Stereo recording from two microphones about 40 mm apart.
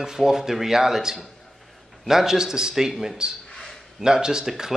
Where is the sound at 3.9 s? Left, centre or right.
Centre.